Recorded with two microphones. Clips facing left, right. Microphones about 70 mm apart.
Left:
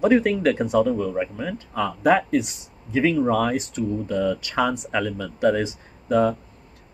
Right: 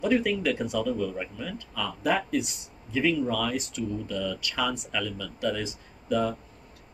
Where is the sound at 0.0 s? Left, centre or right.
Left.